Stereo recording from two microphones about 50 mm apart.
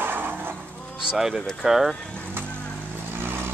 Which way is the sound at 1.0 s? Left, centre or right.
Centre.